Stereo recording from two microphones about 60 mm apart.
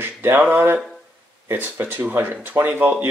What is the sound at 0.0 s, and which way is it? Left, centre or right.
Male singing, right.